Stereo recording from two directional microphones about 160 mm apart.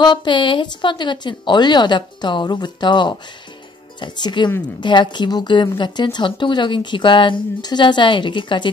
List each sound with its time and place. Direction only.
0.0 s a woman's voice: 30° left (ahead or behind)